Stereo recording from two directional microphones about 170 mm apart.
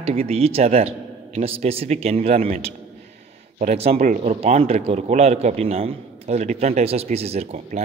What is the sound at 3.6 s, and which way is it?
Speech, 40° right (ahead or behind).